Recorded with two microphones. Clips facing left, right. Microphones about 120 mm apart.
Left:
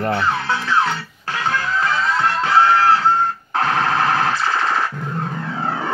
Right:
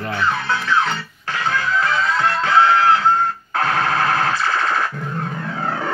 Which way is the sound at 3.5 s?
30° left (ahead or behind).